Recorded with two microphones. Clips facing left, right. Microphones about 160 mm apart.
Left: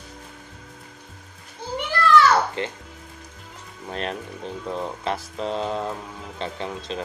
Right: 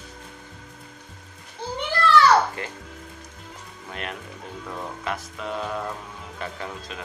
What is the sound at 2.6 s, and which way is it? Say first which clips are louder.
Speech: left 6 dB; 25° left (ahead or behind).